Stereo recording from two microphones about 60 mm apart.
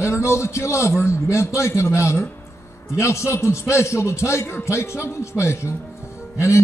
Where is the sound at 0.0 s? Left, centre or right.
Left.